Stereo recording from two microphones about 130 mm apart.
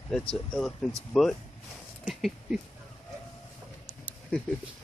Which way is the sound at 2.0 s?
5° right (ahead or behind).